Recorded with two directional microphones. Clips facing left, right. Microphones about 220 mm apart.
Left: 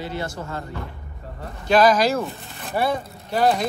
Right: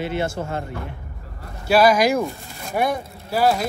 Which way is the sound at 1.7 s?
10° right (ahead or behind).